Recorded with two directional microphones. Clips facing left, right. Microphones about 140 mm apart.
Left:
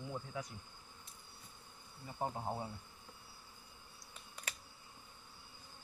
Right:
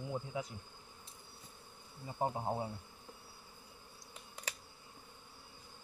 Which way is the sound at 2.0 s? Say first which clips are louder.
Right 4 dB; 20° right (ahead or behind).